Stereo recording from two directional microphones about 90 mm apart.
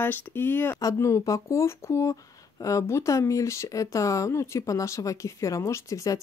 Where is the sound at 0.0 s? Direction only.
25° left (ahead or behind).